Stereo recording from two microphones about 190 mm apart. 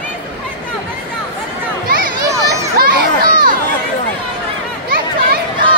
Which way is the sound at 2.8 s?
50° right (ahead or behind).